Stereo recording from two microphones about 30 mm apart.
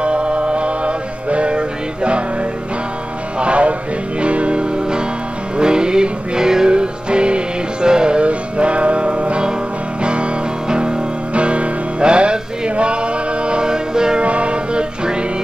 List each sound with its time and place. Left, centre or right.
0.0 s music: right
3.3 s music: right
6.7 s music: right
8.2 s music: right
11.3 s music: right
14.2 s music: right